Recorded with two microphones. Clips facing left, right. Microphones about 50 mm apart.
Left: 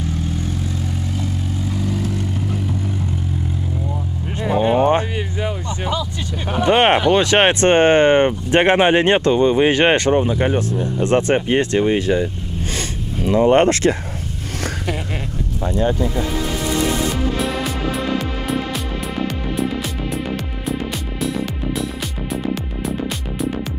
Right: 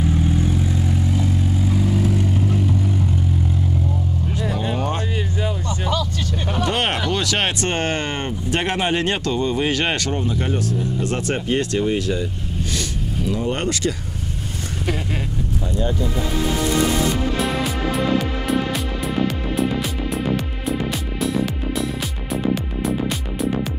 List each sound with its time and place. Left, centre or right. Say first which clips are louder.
0.0 s vehicle: right 4 dB; centre
4.3 s vehicle: left 10 dB; left
5.9 s speech: even; centre
11.8 s speech: left 4 dB; left
12.7 s vehicle: left 1 dB; left
13.5 s speech: left 11 dB; left
15.6 s speech: left 6 dB; left
17.4 s music: even; centre